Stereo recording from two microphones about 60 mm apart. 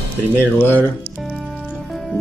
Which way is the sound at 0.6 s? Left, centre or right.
Left.